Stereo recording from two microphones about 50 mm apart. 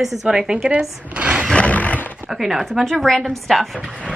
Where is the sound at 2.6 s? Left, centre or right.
Centre.